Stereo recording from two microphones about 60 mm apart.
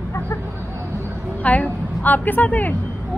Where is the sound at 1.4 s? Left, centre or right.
Left.